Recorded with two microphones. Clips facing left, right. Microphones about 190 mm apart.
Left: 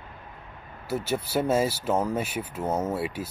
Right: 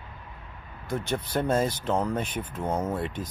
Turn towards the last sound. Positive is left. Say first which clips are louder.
# left 1 dB
turn(degrees=5)  # may be behind; listen again after turning